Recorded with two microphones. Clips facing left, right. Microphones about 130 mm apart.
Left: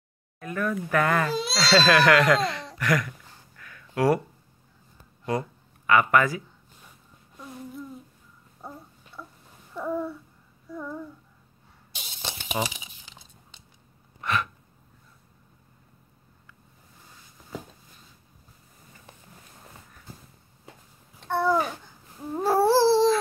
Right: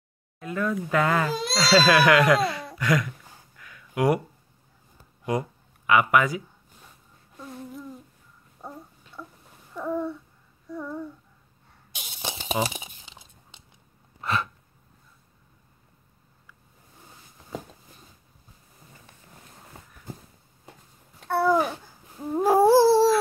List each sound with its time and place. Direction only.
0.4 s speech: 20° right (ahead or behind)
1.2 s speech: centre (ahead or behind); by 3.1 s 15° right (ahead or behind)
3.3 s a sound: 15° right (ahead or behind)
5.2 s speech: 15° right (ahead or behind)
7.3 s humming: centre (ahead or behind)
8.5 s gargling: 5° right (ahead or behind)
9.8 s babbling: 5° left (ahead or behind)
10.7 s child singing: 5° right (ahead or behind)
11.9 s a sound: 10° right (ahead or behind)
12.6 s speech: 50° right (ahead or behind)
13.0 s a sound: 25° right (ahead or behind)
14.2 s gasp: 30° right (ahead or behind)
21.2 s babbling: 5° right (ahead or behind)